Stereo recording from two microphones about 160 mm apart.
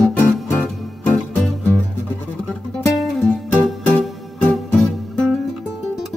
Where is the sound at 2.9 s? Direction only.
Centre (ahead or behind).